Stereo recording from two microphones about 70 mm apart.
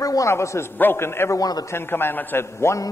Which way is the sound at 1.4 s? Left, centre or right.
Left.